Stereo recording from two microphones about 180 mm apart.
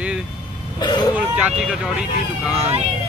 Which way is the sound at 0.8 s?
25° left (ahead or behind).